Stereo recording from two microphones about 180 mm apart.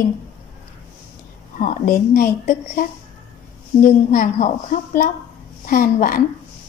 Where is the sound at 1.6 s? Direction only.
55° left (ahead or behind).